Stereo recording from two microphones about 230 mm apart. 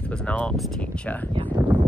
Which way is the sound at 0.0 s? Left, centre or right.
Centre.